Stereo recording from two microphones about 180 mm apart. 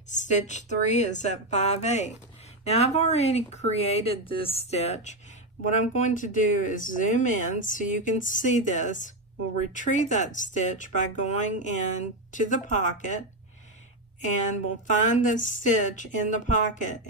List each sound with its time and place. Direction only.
0.1 s speech: 40° left (ahead or behind)
14.2 s speech: 45° left (ahead or behind)